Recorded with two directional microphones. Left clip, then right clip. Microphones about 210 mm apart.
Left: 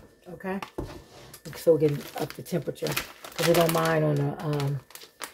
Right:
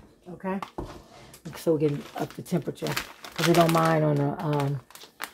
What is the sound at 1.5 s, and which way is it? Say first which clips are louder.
Speech: left 3 dB; 15° right (ahead or behind).